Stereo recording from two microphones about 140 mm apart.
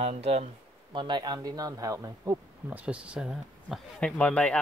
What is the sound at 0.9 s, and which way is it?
Speech, 35° right (ahead or behind).